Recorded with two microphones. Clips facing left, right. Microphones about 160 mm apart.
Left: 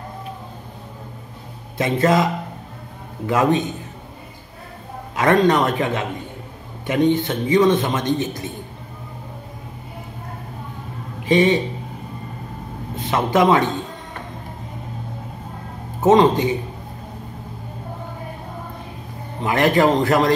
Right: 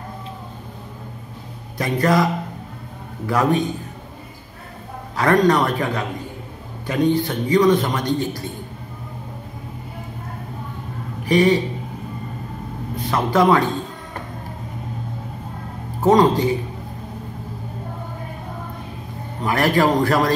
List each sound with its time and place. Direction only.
1.8 s a man's voice: 25° left (ahead or behind)
3.3 s a man's voice: 20° left (ahead or behind)
5.1 s a man's voice: 20° left (ahead or behind)
11.2 s a man's voice: 20° left (ahead or behind)
12.9 s speech: 20° left (ahead or behind)
16.0 s a man's voice: 20° left (ahead or behind)
19.4 s a man's voice: 20° left (ahead or behind)